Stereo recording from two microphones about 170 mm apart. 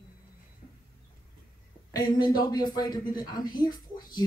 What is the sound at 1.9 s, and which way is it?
Speech, 25° left (ahead or behind).